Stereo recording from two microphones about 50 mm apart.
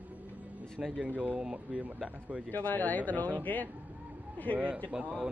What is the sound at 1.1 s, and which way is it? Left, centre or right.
Speech, right.